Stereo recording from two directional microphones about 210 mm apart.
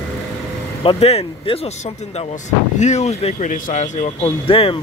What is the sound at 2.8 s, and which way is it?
Speech, 30° left (ahead or behind).